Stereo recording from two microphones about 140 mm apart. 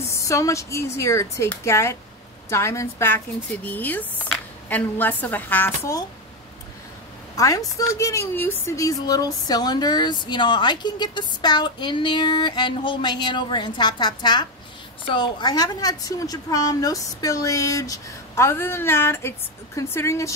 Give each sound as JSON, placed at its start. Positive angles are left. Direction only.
{"t": 0.1, "sound": "a woman's voice", "side_deg": 20}
{"t": 7.3, "sound": "a woman's voice", "side_deg": 25}